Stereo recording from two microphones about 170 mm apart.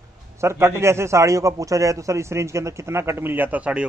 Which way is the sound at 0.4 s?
15° right (ahead or behind).